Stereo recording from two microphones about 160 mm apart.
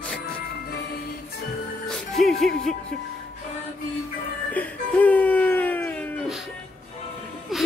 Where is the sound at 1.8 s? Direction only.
Centre (ahead or behind).